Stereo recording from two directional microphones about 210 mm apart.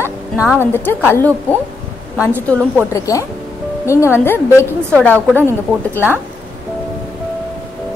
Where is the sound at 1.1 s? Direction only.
10° left (ahead or behind).